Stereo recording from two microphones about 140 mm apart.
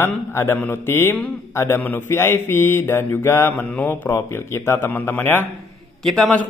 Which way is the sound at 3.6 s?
5° left (ahead or behind).